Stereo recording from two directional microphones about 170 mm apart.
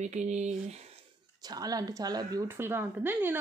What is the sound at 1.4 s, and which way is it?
A woman's voice, 20° right (ahead or behind).